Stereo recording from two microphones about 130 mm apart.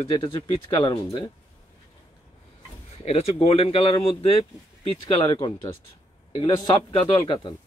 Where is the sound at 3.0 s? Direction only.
50° left (ahead or behind).